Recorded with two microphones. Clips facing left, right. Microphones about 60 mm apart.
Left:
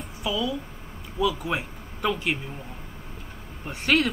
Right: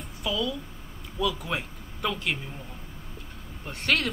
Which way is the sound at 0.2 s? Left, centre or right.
Centre.